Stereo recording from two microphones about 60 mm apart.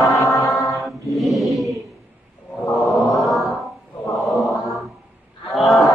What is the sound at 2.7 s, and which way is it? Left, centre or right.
Chant, centre.